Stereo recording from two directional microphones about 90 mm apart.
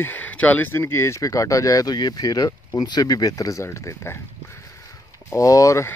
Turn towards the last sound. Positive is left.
turn(degrees=35)  # may be behind; listen again after turning